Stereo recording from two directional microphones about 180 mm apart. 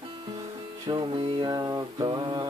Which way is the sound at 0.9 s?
25° right (ahead or behind).